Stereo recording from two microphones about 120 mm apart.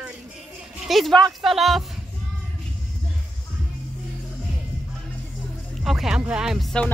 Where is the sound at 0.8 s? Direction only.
Centre (ahead or behind).